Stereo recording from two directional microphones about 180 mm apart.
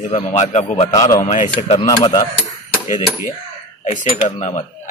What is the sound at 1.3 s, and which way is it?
Speech, 40° left (ahead or behind).